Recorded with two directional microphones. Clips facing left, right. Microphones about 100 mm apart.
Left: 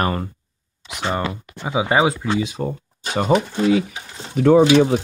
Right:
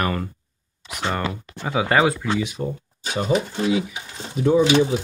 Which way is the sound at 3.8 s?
65° left (ahead or behind).